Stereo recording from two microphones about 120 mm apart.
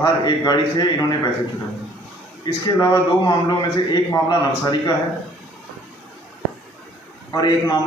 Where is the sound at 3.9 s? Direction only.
35° left (ahead or behind).